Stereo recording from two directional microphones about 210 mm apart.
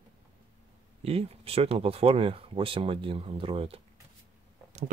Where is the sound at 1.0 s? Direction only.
30° right (ahead or behind).